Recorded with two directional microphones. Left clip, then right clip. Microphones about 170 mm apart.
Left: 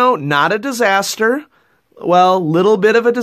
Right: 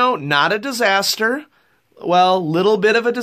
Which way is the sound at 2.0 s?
35° left (ahead or behind).